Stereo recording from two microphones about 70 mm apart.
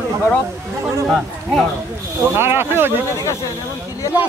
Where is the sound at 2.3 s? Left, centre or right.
Right.